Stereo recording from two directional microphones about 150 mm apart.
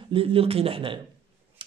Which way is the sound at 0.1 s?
40° right (ahead or behind).